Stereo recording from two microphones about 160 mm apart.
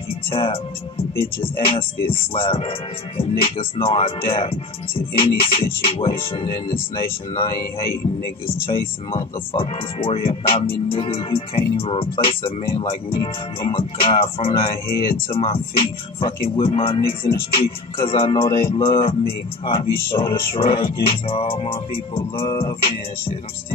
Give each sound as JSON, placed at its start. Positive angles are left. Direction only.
{"t": 0.3, "sound": "speech", "side_deg": 35}
{"t": 8.6, "sound": "speech", "side_deg": 35}